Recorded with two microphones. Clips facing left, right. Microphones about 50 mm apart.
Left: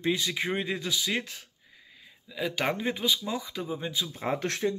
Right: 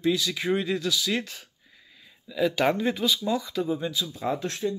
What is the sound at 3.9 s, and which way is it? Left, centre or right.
Speech, left.